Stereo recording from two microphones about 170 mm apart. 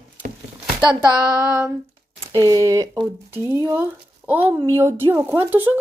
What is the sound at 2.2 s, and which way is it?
Speech, 25° right (ahead or behind).